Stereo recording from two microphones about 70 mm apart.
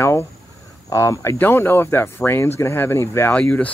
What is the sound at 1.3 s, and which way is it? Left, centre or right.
Speech, left.